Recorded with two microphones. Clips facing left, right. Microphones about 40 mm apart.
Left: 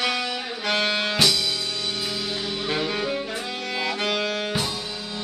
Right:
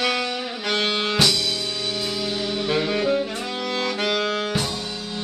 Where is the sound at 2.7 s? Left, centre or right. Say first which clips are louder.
Right 5 dB; centre.